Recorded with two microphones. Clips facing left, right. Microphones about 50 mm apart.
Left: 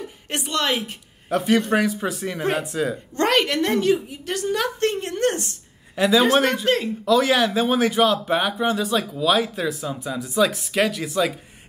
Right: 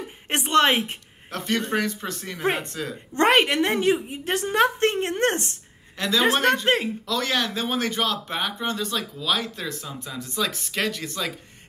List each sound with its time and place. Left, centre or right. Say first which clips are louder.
0.3 s a woman's voice: right 4 dB; right
1.3 s speech: left 6 dB; centre
3.2 s a woman's voice: right 1 dB; right
5.9 s speech: left 5 dB; centre
6.6 s a woman's voice: left 1 dB; right
7.1 s speech: left 9 dB; centre